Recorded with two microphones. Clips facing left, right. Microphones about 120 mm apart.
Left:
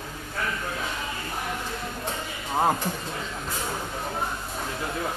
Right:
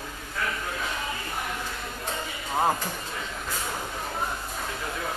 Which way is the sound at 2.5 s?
15° left (ahead or behind).